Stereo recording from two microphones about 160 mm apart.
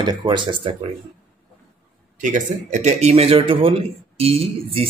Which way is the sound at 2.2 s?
55° right (ahead or behind).